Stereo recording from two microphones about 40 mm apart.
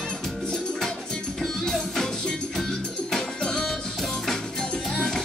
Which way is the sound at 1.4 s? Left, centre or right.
Centre.